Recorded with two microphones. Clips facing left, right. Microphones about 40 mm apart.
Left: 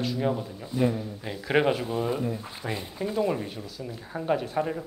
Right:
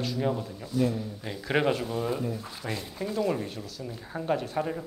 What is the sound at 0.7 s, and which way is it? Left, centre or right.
Speech, centre.